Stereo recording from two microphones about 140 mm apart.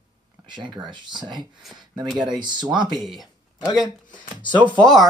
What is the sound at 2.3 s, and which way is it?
Speech, 35° right (ahead or behind).